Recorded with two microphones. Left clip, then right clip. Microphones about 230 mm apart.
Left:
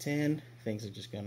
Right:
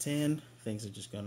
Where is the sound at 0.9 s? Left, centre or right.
Right.